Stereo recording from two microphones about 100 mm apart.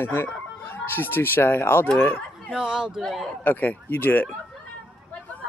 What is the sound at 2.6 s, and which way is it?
Speech, 5° right (ahead or behind).